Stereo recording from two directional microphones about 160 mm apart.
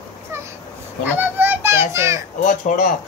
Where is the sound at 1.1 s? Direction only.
10° right (ahead or behind).